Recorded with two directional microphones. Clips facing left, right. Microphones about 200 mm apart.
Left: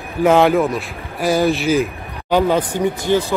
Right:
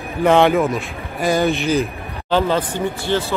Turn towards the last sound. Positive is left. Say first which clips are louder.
# left 3 dB
turn(degrees=15)  # may be behind; listen again after turning